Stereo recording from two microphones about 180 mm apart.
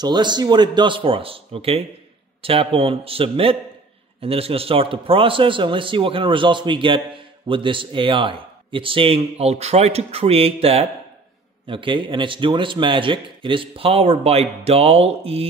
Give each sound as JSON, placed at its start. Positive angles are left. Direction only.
{"t": 0.0, "sound": "a man's voice", "side_deg": -25}